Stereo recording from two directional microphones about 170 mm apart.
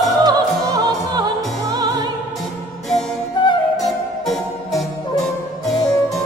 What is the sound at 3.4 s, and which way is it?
Music, 25° left (ahead or behind).